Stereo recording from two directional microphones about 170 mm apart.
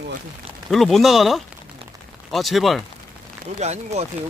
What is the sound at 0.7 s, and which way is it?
Speech, centre (ahead or behind).